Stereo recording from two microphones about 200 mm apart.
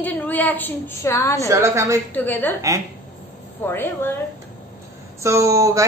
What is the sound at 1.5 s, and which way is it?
Speech, 15° right (ahead or behind).